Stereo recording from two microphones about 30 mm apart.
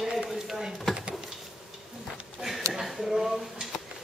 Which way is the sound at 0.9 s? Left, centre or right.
Centre.